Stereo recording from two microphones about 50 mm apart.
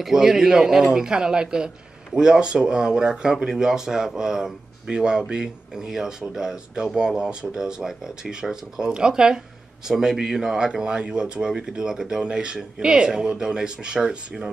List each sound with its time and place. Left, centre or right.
0.0 s speech: centre